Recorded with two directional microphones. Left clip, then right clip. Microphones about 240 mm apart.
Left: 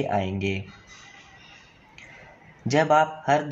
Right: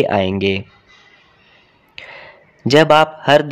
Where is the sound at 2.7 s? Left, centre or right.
Right.